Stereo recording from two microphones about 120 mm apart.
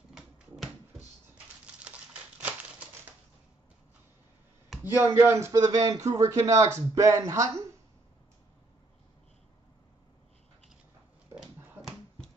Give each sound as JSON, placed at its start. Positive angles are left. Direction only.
{"t": 0.1, "sound": "a sound", "side_deg": -5}
{"t": 1.9, "sound": "crumpling", "side_deg": -10}
{"t": 4.8, "sound": "a man's voice", "side_deg": -20}